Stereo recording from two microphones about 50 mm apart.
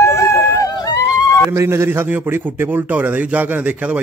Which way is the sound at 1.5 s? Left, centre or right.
Right.